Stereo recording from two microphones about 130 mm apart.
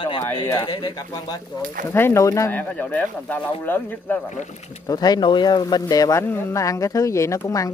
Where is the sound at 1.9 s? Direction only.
20° left (ahead or behind).